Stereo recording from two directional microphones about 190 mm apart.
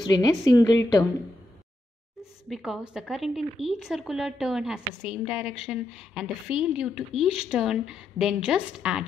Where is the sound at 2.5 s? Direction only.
Centre (ahead or behind).